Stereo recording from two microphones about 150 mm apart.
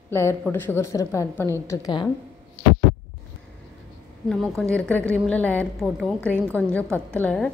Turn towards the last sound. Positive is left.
turn(degrees=5)  # may be behind; listen again after turning